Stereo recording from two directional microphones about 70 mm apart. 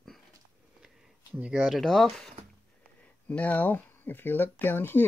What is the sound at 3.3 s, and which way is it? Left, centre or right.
Speech, left.